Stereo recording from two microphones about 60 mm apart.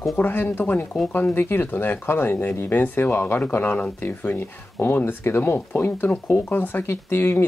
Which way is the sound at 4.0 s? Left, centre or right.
Left.